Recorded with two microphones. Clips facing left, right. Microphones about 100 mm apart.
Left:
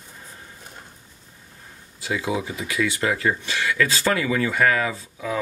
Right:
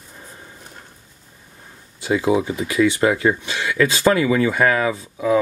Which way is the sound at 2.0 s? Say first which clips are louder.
Right 7 dB; 30° right (ahead or behind).